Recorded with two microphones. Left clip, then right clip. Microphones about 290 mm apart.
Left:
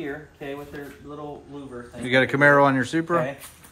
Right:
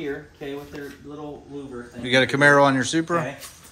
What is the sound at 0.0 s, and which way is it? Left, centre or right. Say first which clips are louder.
Speech: right 2 dB; centre.